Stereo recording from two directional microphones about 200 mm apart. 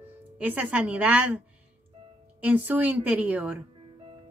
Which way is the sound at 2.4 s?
10° right (ahead or behind).